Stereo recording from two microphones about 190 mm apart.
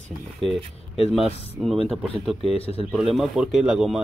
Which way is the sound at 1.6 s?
5° right (ahead or behind).